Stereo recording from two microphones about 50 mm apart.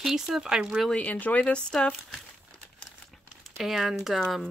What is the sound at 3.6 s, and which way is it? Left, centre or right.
Speech, centre.